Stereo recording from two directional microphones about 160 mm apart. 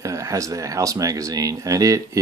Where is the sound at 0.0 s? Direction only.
20° right (ahead or behind).